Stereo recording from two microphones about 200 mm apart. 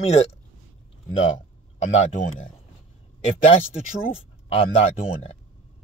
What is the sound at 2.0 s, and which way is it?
Speech, 35° left (ahead or behind).